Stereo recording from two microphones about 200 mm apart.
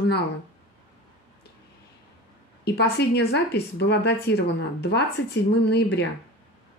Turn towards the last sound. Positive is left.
turn(degrees=60)  # may be behind; listen again after turning